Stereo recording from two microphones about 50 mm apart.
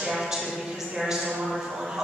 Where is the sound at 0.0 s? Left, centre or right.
Centre.